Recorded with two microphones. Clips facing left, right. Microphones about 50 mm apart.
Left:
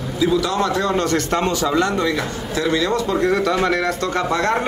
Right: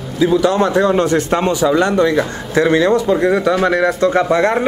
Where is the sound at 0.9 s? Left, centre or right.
Centre.